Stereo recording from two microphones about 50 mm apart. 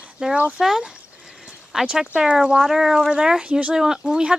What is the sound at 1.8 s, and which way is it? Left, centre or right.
Speech, centre.